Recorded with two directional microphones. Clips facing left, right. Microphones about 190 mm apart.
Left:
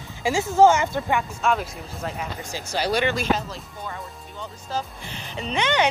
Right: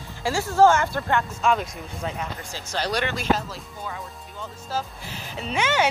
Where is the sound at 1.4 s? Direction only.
Centre (ahead or behind).